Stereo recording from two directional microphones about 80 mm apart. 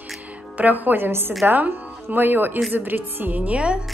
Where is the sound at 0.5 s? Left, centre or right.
Right.